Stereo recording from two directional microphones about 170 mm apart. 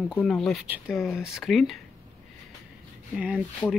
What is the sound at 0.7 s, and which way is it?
Speech, 10° right (ahead or behind).